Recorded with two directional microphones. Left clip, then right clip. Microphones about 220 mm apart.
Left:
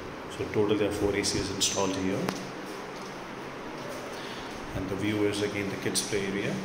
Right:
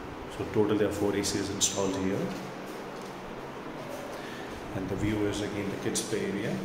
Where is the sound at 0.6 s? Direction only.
15° right (ahead or behind).